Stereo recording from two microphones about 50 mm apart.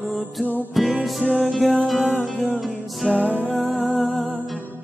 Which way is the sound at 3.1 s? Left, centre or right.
Left.